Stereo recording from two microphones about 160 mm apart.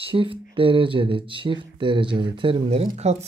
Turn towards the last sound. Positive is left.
turn(degrees=-40)  # may be behind; listen again after turning